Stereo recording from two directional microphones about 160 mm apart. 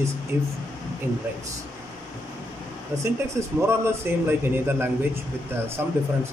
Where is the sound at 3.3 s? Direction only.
15° right (ahead or behind).